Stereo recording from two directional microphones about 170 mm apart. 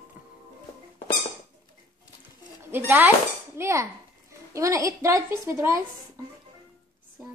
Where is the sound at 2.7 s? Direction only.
10° right (ahead or behind).